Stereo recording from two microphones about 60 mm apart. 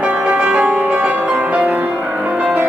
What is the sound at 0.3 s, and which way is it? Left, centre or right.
Music, right.